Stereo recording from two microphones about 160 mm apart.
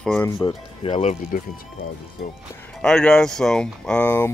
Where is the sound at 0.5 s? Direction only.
35° left (ahead or behind).